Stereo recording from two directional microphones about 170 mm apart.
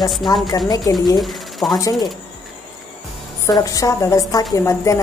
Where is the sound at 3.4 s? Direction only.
20° left (ahead or behind).